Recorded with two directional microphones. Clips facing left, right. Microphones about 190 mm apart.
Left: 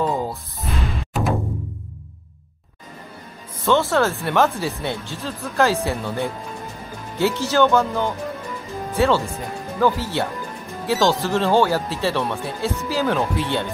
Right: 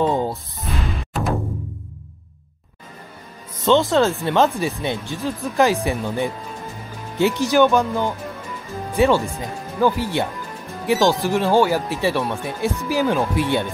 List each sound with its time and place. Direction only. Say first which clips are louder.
0.3 s music: right 1 dB; centre (ahead or behind)
3.6 s speech: right 2 dB; 15° right (ahead or behind)